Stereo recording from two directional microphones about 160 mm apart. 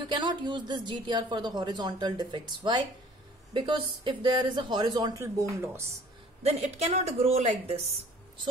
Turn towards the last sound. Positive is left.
turn(degrees=-40)  # may be behind; listen again after turning